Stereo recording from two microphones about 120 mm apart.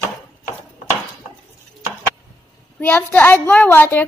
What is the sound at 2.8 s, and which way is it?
A child's voice, 15° left (ahead or behind).